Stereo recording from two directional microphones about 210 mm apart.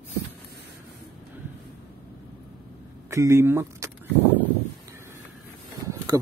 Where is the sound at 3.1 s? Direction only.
15° right (ahead or behind).